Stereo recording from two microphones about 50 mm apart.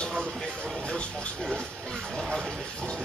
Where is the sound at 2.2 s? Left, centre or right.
Centre.